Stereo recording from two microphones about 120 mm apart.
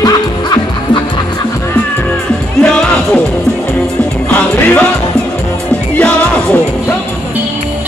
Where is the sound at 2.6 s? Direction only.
10° left (ahead or behind).